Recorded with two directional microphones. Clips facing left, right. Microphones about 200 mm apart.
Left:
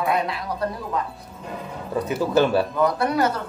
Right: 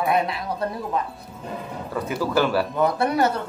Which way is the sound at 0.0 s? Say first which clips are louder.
Right 1 dB; 25° right (ahead or behind).